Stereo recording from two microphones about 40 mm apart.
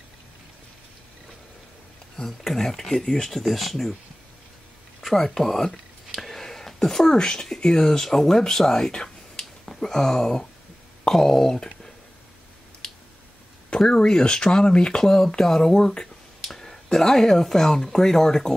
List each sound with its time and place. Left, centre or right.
2.1 s speech: centre
3.3 s speech: centre
5.0 s speech: centre
6.1 s a sound: centre
7.2 s speech: centre
12.8 s a sound: centre
13.7 s speech: centre